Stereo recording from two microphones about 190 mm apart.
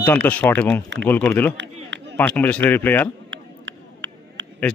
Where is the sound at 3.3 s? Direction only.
70° right (ahead or behind).